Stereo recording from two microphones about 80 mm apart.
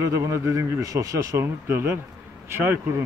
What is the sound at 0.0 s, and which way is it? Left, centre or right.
A man's voice, right.